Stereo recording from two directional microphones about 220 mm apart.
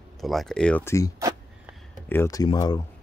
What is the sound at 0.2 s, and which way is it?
Speech, centre (ahead or behind).